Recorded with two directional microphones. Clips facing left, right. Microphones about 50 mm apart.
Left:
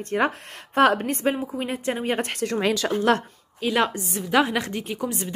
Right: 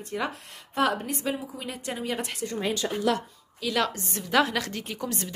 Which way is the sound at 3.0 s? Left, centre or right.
Left.